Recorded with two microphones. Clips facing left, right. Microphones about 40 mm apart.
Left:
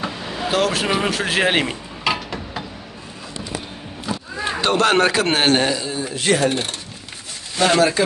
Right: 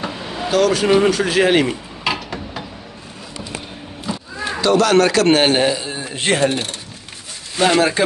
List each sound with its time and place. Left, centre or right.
0.0 s vehicle: centre
0.5 s speech: left
0.8 s speech: centre
1.1 s speech: centre
2.0 s a sound: centre
4.5 s speech: left
5.2 s a man's voice: centre
5.8 s speech: right
7.5 s speech: centre